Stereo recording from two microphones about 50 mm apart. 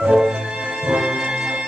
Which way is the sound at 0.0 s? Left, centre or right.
Centre.